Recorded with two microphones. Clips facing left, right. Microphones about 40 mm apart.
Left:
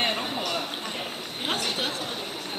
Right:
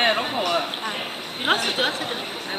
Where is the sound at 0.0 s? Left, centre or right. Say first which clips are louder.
Right 6 dB; right.